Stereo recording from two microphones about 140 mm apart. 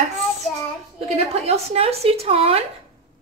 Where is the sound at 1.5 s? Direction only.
45° right (ahead or behind).